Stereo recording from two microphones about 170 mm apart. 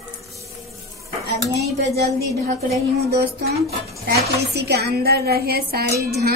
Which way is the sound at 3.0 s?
70° right (ahead or behind).